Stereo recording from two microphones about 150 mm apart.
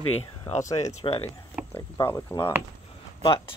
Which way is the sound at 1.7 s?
20° left (ahead or behind).